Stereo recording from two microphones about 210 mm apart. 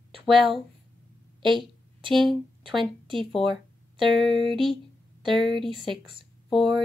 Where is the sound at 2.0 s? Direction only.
25° right (ahead or behind).